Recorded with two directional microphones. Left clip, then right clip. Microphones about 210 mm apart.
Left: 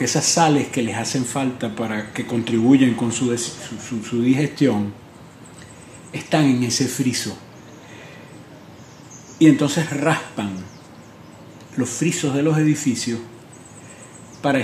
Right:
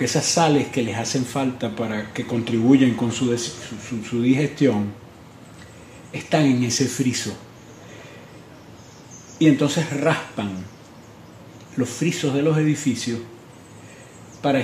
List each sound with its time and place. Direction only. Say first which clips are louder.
0.0 s speech: left 2 dB; centre (ahead or behind)
6.1 s speech: left 1 dB; centre (ahead or behind)
9.4 s speech: left 3 dB; centre (ahead or behind)
11.7 s speech: left 1 dB; centre (ahead or behind)
14.4 s speech: left 1 dB; centre (ahead or behind)